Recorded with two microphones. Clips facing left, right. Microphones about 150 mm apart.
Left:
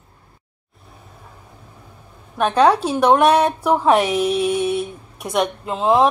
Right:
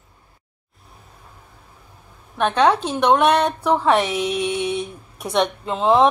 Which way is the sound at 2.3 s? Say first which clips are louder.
Left 2 dB; 10° left (ahead or behind).